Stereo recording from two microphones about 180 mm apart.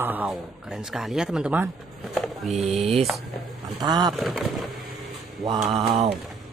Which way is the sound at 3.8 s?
20° right (ahead or behind).